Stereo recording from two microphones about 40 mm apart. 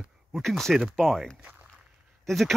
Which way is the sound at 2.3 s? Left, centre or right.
Centre.